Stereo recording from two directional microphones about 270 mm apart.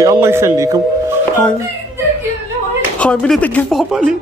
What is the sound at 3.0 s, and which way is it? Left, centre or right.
Speech, centre.